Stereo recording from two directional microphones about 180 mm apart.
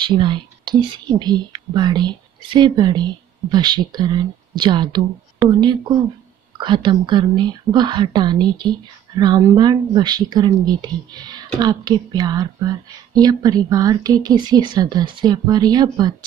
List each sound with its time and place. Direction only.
0.0 s a woman's voice: 25° right (ahead or behind)